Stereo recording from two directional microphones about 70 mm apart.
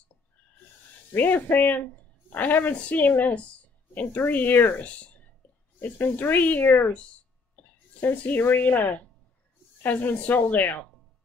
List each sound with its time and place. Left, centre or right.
1.1 s a woman's voice: left